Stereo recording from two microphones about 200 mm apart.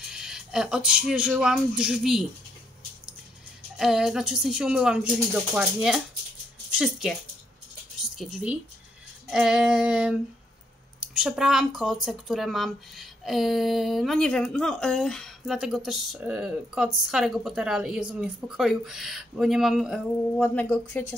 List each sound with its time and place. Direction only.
0.0 s speech: 5° right (ahead or behind)
3.7 s speech: centre (ahead or behind)
8.2 s speech: centre (ahead or behind)
11.1 s speech: centre (ahead or behind)
20.4 s speech: 10° left (ahead or behind)